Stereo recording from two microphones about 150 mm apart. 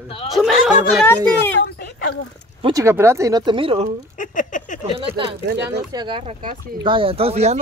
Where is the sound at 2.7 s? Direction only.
20° right (ahead or behind); by 3.8 s 35° right (ahead or behind).